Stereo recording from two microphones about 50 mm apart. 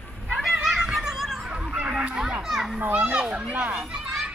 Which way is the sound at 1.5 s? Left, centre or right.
Right.